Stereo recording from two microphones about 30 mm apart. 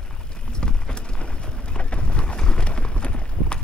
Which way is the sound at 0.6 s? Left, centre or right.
Left.